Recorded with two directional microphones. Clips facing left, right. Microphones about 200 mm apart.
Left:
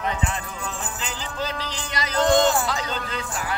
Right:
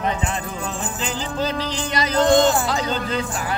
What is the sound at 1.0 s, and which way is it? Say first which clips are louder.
Music: right 6 dB; 30° right (ahead or behind).